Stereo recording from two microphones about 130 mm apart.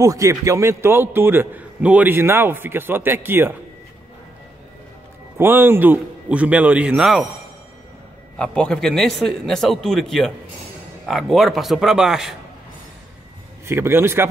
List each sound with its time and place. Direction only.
0.0 s a man's voice: 25° right (ahead or behind)
5.4 s a man's voice: 15° right (ahead or behind)
8.4 s a man's voice: 5° left (ahead or behind)
13.7 s a man's voice: 20° right (ahead or behind)